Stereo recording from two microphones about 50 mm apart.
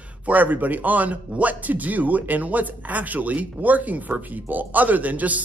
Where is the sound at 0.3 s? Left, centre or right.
Right.